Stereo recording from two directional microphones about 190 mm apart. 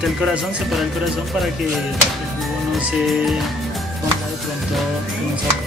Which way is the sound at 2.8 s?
5° right (ahead or behind).